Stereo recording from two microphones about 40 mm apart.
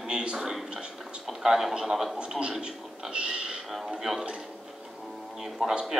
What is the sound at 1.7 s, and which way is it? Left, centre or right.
Speech, centre.